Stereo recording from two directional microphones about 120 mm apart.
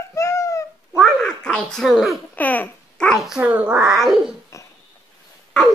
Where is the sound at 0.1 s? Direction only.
25° left (ahead or behind).